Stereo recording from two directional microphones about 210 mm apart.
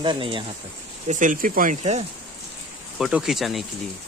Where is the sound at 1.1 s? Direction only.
40° right (ahead or behind).